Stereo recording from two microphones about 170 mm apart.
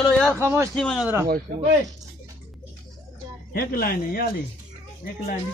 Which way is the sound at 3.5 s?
60° left (ahead or behind).